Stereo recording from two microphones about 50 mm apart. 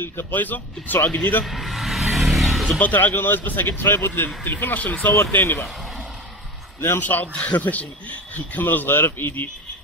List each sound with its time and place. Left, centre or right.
0.0 s speech: left
1.4 s vehicle: centre
2.8 s speech: left
4.7 s speech: left
5.1 s speech: left
7.0 s speech: left